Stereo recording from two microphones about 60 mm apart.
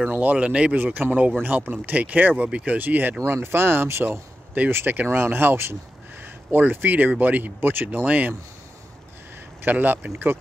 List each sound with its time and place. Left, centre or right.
0.1 s speech: right
0.7 s speech: right
9.6 s speech: right